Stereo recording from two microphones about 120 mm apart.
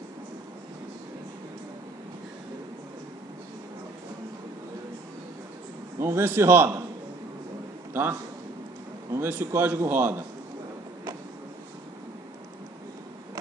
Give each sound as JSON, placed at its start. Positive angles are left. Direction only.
{"t": 5.9, "sound": "a man's voice", "side_deg": -20}
{"t": 7.9, "sound": "a man's voice", "side_deg": -20}